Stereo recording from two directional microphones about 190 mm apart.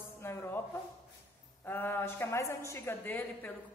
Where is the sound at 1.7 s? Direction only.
10° left (ahead or behind).